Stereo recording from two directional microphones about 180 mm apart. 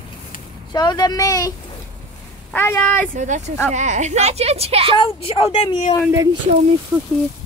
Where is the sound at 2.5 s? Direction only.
10° left (ahead or behind).